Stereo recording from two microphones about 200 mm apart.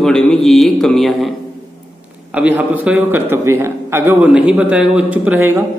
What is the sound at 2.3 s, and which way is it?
A man's voice, 5° right (ahead or behind).